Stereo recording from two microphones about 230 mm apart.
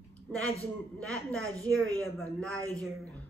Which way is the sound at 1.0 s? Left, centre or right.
Centre.